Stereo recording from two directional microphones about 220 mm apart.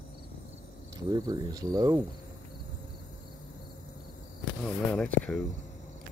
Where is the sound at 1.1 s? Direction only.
15° right (ahead or behind).